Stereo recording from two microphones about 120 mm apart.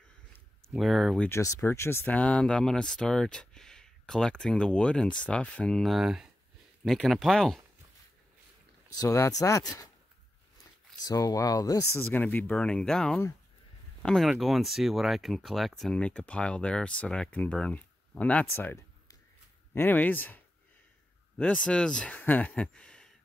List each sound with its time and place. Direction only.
0.7 s speech: centre (ahead or behind)
1.3 s speech: 25° left (ahead or behind); by 7.6 s 5° left (ahead or behind)
8.9 s speech: 25° left (ahead or behind)
11.1 s speech: 30° left (ahead or behind); by 23.1 s 5° left (ahead or behind)